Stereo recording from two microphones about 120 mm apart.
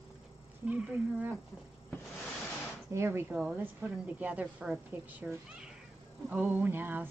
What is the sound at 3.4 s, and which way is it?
A woman's voice, 10° right (ahead or behind).